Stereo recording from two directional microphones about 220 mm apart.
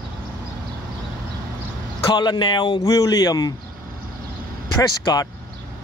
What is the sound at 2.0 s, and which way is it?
Speech, 20° left (ahead or behind).